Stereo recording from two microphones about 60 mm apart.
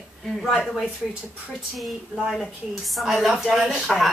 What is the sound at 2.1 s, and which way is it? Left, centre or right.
Speech, left.